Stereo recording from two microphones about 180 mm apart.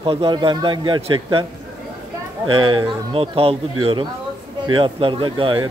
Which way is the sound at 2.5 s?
25° right (ahead or behind).